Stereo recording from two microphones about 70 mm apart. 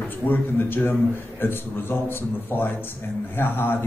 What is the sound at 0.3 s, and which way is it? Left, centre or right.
A man's voice, left.